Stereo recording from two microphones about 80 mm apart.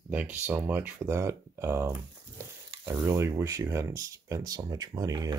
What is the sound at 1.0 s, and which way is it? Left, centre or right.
Frying, right.